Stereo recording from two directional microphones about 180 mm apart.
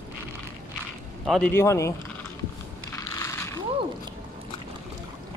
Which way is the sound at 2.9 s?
15° left (ahead or behind).